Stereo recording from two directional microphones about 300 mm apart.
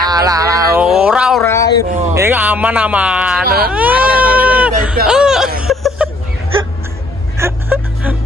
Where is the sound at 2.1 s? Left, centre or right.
Centre.